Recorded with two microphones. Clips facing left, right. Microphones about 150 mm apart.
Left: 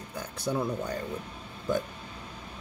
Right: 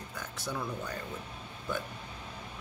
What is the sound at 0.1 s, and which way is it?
Speech, 35° left (ahead or behind).